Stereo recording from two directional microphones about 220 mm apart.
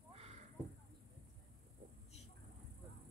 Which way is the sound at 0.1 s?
30° right (ahead or behind).